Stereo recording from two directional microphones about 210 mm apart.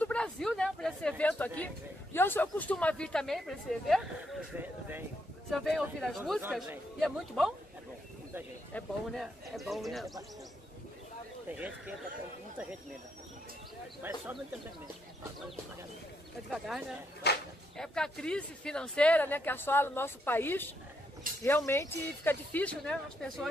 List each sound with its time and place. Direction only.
0.0 s speech: 5° left (ahead or behind)
8.7 s speech: centre (ahead or behind)
11.4 s speech: 5° right (ahead or behind)
14.0 s speech: 10° right (ahead or behind)
16.4 s speech: centre (ahead or behind)
17.2 s a sound: 50° left (ahead or behind)
17.7 s speech: 5° left (ahead or behind)